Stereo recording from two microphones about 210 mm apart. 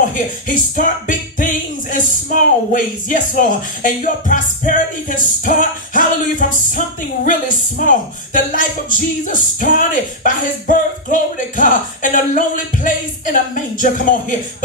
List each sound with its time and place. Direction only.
0.1 s music: 40° left (ahead or behind)
7.8 s music: 40° left (ahead or behind)